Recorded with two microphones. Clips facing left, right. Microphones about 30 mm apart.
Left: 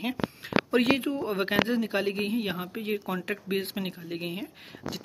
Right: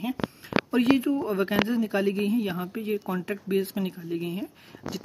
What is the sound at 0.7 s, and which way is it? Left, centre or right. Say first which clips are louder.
Speech: right 2 dB; left.